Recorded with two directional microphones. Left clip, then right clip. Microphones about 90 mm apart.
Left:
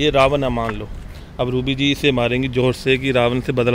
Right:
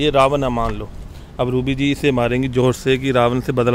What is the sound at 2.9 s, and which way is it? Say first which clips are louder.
Speech: left 1 dB; 20° right (ahead or behind).